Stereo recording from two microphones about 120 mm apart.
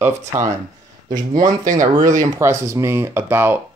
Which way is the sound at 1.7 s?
90° right.